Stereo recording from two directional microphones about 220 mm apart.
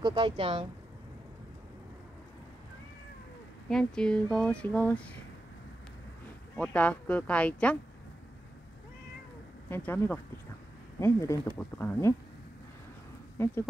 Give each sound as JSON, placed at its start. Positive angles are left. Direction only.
{"t": 0.0, "sound": "speech", "side_deg": -25}
{"t": 3.6, "sound": "speech", "side_deg": 5}
{"t": 6.5, "sound": "speech", "side_deg": 5}
{"t": 9.7, "sound": "speech", "side_deg": 10}
{"t": 13.4, "sound": "speech", "side_deg": 10}